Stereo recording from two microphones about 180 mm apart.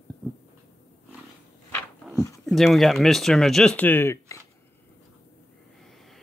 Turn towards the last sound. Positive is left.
turn(degrees=15)  # may be behind; listen again after turning